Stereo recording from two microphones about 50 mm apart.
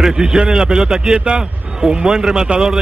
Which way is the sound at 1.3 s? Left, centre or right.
Centre.